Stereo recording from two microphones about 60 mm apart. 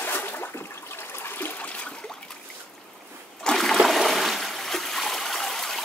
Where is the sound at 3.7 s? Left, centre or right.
Centre.